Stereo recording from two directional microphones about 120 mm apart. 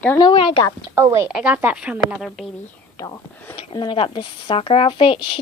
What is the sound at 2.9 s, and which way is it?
Whispering, 30° left (ahead or behind).